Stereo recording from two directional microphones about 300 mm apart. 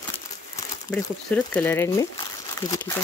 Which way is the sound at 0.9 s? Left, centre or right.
Centre.